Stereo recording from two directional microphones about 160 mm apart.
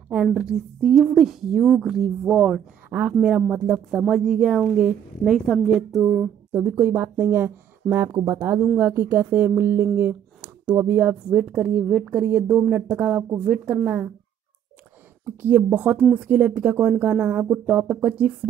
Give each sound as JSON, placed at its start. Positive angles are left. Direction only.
{"t": 0.1, "sound": "a woman's voice", "side_deg": -5}
{"t": 6.1, "sound": "speech", "side_deg": -10}
{"t": 15.2, "sound": "speech", "side_deg": -10}